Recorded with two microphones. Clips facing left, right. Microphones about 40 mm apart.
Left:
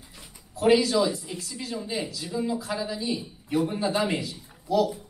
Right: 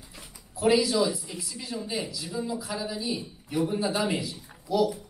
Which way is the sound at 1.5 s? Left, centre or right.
Centre.